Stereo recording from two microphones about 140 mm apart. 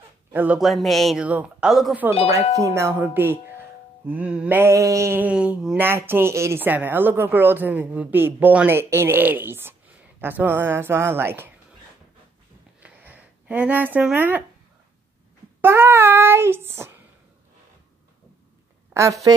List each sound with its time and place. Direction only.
0.3 s speech: 15° right (ahead or behind)
0.6 s speech: centre (ahead or behind)
2.5 s speech: 20° right (ahead or behind)
12.8 s a sound: 10° right (ahead or behind)
15.6 s child singing: 15° right (ahead or behind)
18.9 s a sound: 15° right (ahead or behind)